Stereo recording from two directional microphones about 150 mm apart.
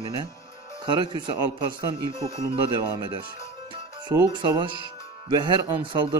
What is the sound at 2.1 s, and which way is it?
Speech, 20° left (ahead or behind).